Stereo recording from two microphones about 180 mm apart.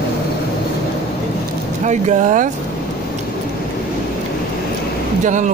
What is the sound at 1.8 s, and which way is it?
Speech, 40° right (ahead or behind).